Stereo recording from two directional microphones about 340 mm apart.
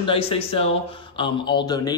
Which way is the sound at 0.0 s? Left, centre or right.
Centre.